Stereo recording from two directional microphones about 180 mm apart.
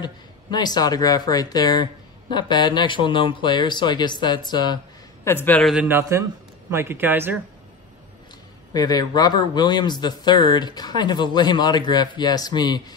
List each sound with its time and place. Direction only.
0.0 s speech: 25° left (ahead or behind)
5.2 s a man's voice: 10° left (ahead or behind)
5.9 s a man's voice: 15° right (ahead or behind)
8.7 s speech: 20° left (ahead or behind)